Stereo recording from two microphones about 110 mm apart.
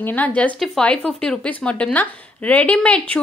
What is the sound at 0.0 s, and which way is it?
Speech, 15° left (ahead or behind).